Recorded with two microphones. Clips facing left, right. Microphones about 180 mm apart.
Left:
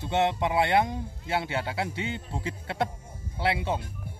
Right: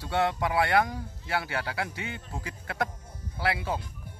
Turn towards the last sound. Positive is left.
turn(degrees=25)  # may be behind; listen again after turning